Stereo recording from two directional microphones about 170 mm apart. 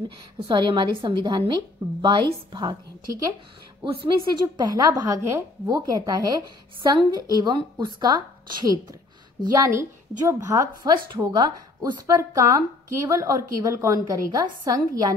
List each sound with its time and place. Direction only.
0.4 s a woman's voice: 25° right (ahead or behind)
3.8 s a woman's voice: 30° right (ahead or behind)